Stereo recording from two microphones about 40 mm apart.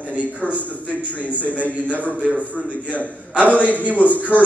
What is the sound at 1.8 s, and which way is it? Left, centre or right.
Speech, left.